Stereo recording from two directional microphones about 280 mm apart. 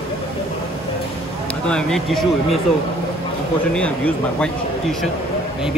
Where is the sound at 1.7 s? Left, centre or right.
Centre.